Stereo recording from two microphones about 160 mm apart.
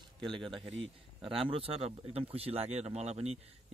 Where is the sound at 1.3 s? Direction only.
35° right (ahead or behind).